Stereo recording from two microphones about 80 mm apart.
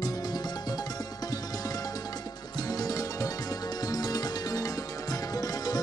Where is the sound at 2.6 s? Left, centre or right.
Left.